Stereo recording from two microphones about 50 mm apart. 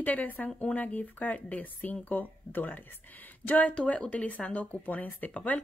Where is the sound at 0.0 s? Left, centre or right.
Left.